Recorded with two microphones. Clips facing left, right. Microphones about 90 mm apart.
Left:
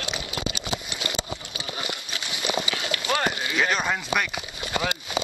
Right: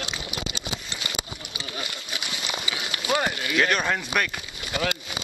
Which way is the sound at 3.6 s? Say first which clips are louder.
Right 1 dB; 5° left (ahead or behind).